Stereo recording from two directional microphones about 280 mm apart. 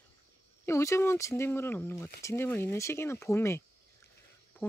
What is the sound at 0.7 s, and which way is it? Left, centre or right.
Speech, centre.